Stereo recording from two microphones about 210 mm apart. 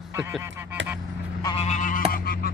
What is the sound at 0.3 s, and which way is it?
Duck, 10° right (ahead or behind).